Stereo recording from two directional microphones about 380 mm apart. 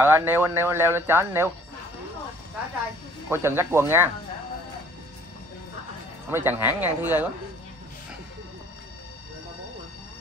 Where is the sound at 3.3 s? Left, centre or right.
Centre.